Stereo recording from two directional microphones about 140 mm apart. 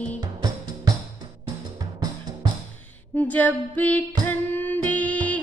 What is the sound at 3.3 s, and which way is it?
Music, 10° left (ahead or behind).